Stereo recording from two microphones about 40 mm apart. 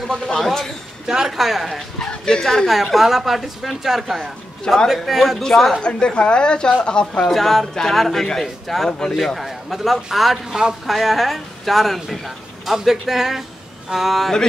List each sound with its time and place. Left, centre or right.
0.4 s a man's voice: centre
1.0 s speech: centre
2.0 s speech: centre
2.4 s a man's voice: centre
5.8 s a woman's voice: left
7.2 s speech: centre